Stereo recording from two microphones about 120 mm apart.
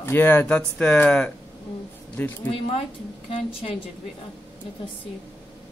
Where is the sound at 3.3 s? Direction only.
50° left (ahead or behind).